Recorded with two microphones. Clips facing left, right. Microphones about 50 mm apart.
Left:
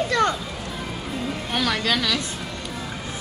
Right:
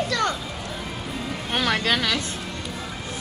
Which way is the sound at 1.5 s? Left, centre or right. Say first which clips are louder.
Right 1 dB; right.